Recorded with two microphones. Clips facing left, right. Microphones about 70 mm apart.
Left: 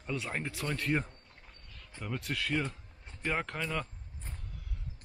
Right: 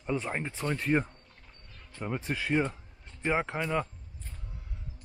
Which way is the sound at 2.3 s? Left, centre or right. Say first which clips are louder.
Right 5 dB; centre.